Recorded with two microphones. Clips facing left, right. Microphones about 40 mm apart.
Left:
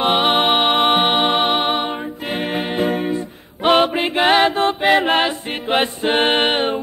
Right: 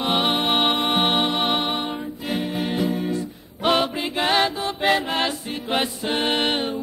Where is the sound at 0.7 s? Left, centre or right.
Left.